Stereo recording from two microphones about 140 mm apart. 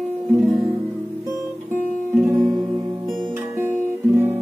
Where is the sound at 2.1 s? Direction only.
10° right (ahead or behind).